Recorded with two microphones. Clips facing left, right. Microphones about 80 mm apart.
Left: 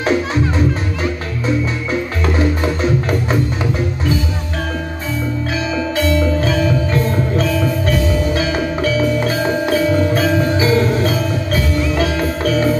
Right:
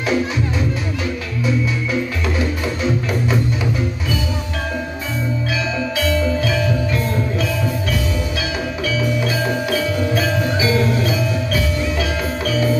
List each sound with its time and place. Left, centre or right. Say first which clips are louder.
6.4 s music: left 3 dB; left